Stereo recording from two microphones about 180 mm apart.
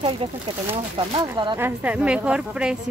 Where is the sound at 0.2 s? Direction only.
30° right (ahead or behind).